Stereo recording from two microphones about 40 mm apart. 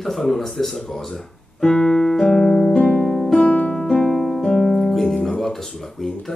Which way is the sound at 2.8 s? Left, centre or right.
Centre.